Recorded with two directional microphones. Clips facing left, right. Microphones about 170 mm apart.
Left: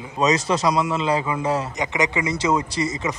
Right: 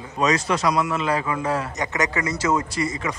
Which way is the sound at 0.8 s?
25° left (ahead or behind).